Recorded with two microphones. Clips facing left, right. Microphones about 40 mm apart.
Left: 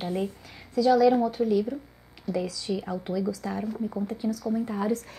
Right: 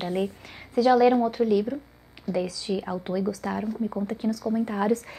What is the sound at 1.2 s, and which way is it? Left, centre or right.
Speech, right.